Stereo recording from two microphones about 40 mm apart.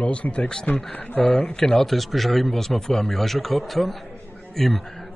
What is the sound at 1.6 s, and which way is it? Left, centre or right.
Speech, centre.